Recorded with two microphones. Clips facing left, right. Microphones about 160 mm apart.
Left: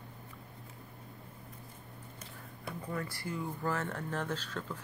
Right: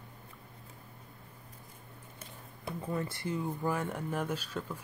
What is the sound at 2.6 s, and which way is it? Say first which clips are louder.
Speech: right 3 dB; 20° right (ahead or behind).